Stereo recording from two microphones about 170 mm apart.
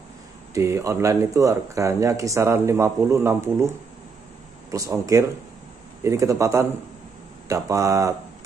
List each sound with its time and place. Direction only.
0.6 s speech: 15° right (ahead or behind)
4.6 s speech: 20° right (ahead or behind)